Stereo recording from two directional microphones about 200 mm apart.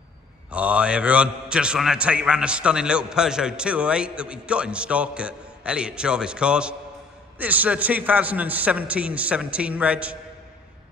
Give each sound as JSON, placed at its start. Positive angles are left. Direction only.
{"t": 0.5, "sound": "a man's voice", "side_deg": -5}